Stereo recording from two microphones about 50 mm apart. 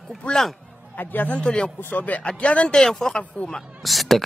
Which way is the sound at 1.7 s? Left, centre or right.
Left.